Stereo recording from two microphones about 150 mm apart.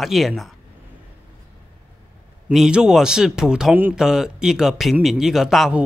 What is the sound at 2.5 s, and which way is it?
Speech, 5° right (ahead or behind).